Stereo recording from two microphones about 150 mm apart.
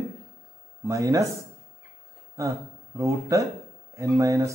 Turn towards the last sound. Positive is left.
turn(degrees=-20)  # may be behind; listen again after turning